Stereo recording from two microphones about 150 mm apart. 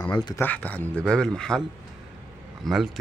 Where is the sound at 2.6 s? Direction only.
Centre (ahead or behind).